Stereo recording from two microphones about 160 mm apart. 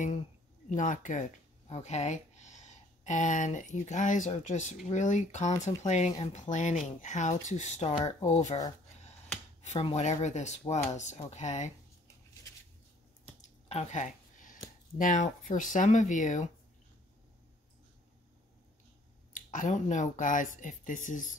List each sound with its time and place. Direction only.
0.7 s speech: 50° left (ahead or behind)
9.7 s speech: 40° left (ahead or behind)
13.4 s a sound: 45° left (ahead or behind)
15.0 s speech: 50° left (ahead or behind)
19.3 s speech: 55° left (ahead or behind)